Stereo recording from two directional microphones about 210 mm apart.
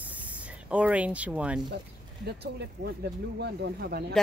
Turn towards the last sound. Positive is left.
turn(degrees=-50)  # may be behind; listen again after turning